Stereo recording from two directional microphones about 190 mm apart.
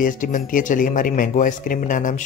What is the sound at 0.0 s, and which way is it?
Speech, 45° left (ahead or behind).